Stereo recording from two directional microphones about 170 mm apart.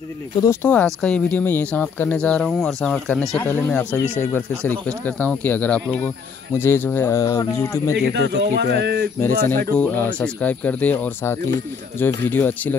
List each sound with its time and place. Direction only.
0.4 s speech: 15° left (ahead or behind)
8.1 s speech: 80° right
9.5 s speech: 10° left (ahead or behind)